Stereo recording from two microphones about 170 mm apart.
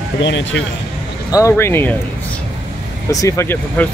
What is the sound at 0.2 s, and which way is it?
Speech, 90° left.